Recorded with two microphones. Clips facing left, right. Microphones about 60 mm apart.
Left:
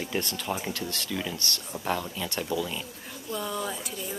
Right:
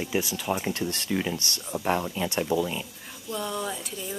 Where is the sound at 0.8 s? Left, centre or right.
Right.